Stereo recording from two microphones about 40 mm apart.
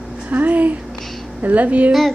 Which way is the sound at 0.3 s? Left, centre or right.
Right.